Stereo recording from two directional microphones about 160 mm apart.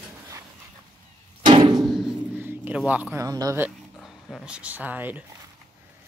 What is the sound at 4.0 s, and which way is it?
Dog, centre (ahead or behind).